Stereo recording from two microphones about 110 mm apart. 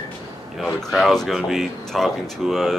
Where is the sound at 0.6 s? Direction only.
Centre (ahead or behind).